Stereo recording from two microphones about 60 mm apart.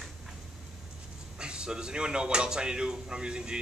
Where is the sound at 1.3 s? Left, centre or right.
Centre.